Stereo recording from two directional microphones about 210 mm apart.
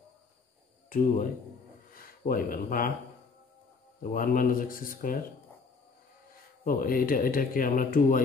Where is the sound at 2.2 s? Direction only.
45° left (ahead or behind).